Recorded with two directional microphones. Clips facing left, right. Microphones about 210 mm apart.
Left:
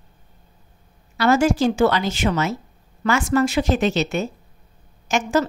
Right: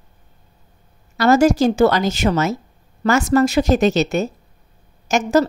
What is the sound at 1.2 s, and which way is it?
Speech, 40° right (ahead or behind).